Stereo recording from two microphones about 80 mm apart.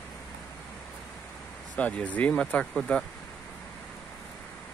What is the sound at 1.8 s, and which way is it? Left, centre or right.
Speech, centre.